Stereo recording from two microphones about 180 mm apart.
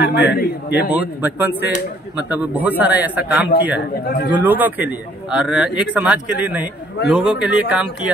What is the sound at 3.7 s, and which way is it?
Speech, 60° left (ahead or behind).